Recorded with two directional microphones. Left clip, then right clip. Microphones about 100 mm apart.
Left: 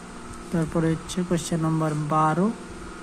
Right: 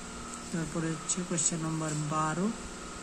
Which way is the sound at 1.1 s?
65° left (ahead or behind).